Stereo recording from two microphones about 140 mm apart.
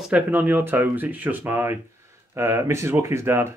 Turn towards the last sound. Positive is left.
turn(degrees=-20)  # may be behind; listen again after turning